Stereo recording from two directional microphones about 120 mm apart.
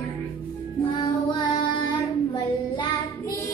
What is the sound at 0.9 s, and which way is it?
Child singing, 40° left (ahead or behind).